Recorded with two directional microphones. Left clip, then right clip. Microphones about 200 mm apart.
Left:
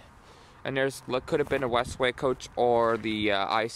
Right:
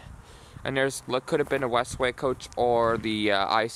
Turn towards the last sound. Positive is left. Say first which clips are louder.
# right 2 dB
turn(degrees=-5)  # may be behind; listen again after turning